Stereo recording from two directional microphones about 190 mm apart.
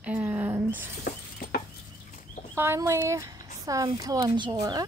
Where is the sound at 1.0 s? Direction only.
50° left (ahead or behind).